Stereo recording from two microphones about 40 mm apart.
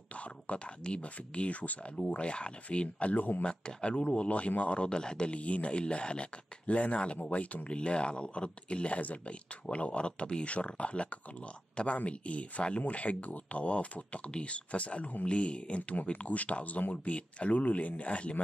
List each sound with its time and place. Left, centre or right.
0.1 s speech: left
6.7 s speech: left